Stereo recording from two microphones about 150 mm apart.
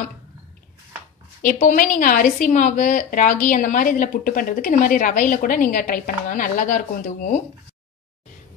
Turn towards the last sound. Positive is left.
turn(degrees=60)  # may be behind; listen again after turning